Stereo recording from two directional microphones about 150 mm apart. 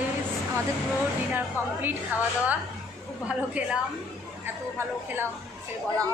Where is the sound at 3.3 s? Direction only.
10° right (ahead or behind).